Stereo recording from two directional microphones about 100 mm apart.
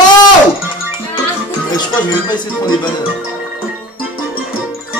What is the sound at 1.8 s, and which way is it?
Speech, 45° left (ahead or behind).